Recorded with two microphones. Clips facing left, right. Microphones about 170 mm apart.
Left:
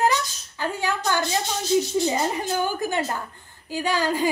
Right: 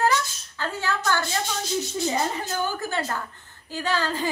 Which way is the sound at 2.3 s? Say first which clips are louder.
Left 3 dB; 15° left (ahead or behind).